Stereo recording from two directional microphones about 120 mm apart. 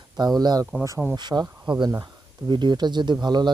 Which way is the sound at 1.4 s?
10° right (ahead or behind).